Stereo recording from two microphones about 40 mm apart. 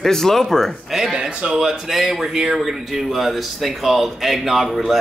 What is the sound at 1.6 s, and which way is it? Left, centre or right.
A man's voice, centre.